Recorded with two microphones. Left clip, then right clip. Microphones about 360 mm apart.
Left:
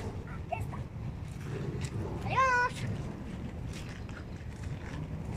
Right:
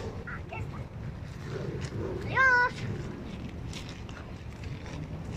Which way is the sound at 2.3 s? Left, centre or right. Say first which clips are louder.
Right 4 dB; centre.